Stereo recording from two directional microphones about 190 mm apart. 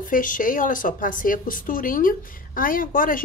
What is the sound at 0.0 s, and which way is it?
Speech, 45° left (ahead or behind).